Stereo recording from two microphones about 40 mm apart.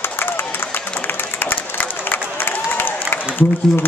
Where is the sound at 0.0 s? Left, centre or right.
Left.